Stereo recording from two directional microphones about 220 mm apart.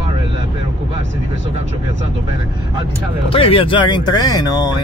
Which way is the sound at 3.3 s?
25° left (ahead or behind).